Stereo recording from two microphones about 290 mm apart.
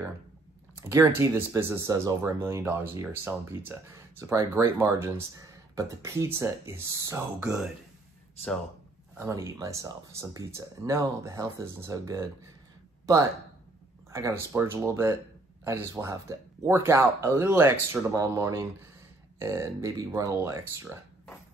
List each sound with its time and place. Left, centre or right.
0.8 s speech: centre
9.2 s speech: centre
14.1 s speech: centre